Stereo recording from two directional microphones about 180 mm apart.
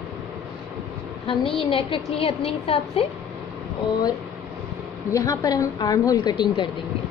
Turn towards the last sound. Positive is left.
turn(degrees=25)  # may be behind; listen again after turning